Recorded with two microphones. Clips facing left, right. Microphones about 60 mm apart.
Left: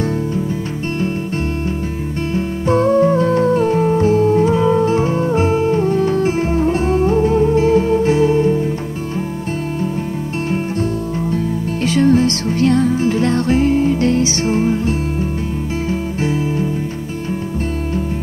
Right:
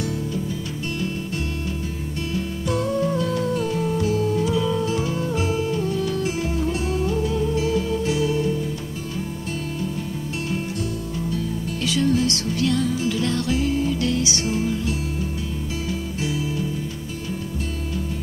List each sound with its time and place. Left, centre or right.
2.3 s music: left
10.5 s music: left